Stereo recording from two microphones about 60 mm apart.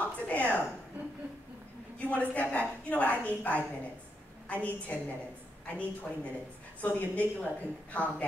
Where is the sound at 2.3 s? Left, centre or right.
Left.